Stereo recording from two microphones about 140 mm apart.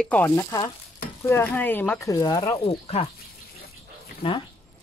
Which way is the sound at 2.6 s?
45° left (ahead or behind).